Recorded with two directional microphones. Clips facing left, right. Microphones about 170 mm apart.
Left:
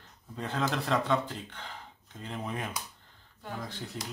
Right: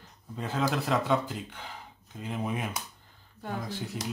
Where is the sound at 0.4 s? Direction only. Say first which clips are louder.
Right 2 dB; 5° right (ahead or behind).